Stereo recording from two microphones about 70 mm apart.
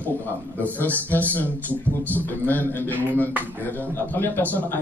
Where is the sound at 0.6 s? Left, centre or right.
Left.